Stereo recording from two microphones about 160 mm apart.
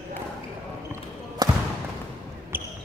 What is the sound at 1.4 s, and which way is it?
Basketball bounce, 25° right (ahead or behind).